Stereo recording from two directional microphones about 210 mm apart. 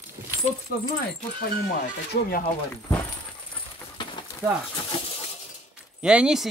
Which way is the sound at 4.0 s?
25° left (ahead or behind).